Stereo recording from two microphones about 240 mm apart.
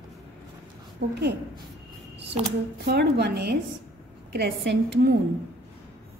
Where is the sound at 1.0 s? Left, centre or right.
Right.